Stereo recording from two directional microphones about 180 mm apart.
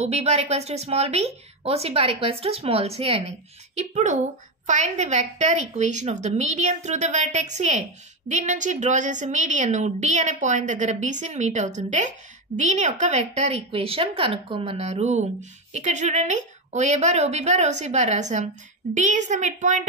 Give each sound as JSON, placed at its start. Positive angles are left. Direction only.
{"t": 0.0, "sound": "a woman's voice", "side_deg": -35}